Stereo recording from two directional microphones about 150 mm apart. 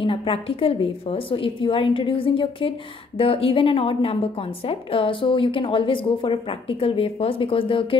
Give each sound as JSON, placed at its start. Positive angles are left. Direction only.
{"t": 0.0, "sound": "a woman's voice", "side_deg": 35}